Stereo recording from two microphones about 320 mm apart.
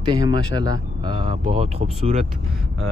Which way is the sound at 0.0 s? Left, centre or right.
Centre.